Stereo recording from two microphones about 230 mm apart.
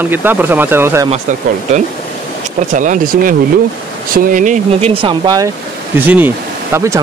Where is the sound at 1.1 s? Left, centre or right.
Right.